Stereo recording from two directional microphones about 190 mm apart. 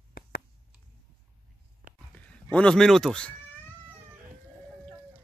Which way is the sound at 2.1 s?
5° left (ahead or behind).